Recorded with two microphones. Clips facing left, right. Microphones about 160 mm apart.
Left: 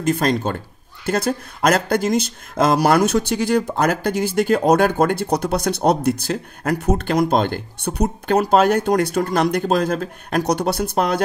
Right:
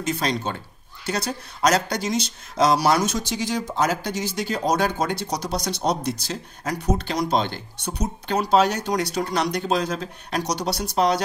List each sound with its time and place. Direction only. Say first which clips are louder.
0.0 s speech: left 6 dB; 50° left (ahead or behind)